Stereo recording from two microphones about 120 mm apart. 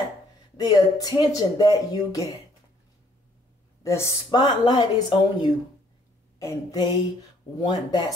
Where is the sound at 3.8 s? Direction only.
25° left (ahead or behind).